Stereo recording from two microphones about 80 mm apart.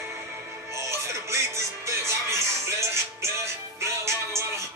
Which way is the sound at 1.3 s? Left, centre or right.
Right.